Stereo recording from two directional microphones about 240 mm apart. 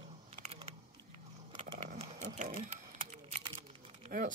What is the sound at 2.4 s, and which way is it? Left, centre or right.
Typing, right.